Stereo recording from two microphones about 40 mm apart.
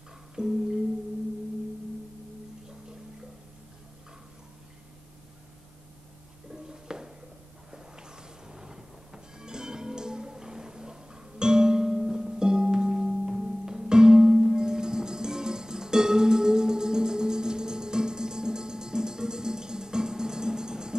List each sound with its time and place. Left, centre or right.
0.4 s music: centre
6.5 s a sound: centre
7.7 s music: centre